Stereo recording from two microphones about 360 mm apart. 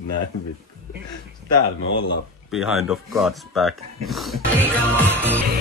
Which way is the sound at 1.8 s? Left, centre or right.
Left.